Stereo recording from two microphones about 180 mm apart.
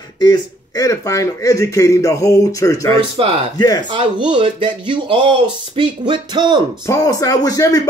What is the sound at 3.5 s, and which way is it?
Speech, 20° left (ahead or behind).